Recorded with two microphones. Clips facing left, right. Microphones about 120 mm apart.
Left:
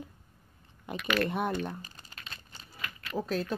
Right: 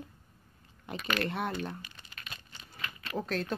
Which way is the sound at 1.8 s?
35° left (ahead or behind).